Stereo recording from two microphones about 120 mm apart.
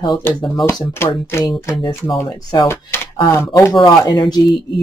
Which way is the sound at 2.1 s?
40° left (ahead or behind).